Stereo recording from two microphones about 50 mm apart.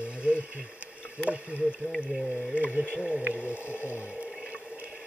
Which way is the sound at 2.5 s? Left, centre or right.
Right.